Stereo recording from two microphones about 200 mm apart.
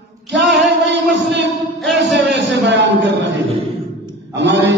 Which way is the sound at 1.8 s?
Centre (ahead or behind).